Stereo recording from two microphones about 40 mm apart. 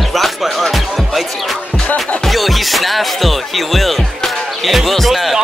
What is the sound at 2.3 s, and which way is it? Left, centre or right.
Music, centre.